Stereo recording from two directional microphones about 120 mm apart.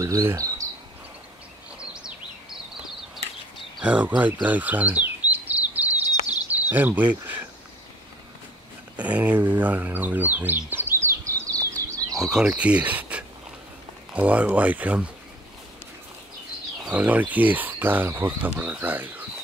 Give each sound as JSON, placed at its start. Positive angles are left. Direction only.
{"t": 0.0, "sound": "cricket", "side_deg": -20}
{"t": 3.8, "sound": "speech", "side_deg": -10}
{"t": 5.5, "sound": "chirp", "side_deg": -15}
{"t": 6.4, "sound": "speech", "side_deg": -15}
{"t": 8.9, "sound": "bird", "side_deg": -10}
{"t": 12.2, "sound": "speech", "side_deg": -5}
{"t": 16.8, "sound": "speech", "side_deg": -15}